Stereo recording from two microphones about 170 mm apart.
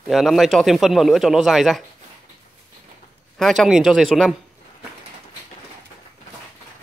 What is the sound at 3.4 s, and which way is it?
Speech, centre (ahead or behind).